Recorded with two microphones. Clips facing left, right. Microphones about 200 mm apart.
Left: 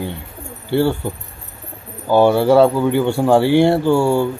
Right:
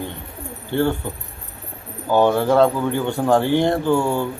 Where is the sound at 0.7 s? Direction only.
10° left (ahead or behind).